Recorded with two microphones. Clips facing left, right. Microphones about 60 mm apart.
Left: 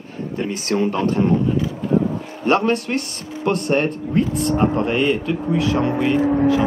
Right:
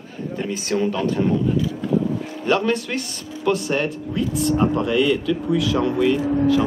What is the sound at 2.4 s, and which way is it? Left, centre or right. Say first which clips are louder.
Speech: left 3 dB; left.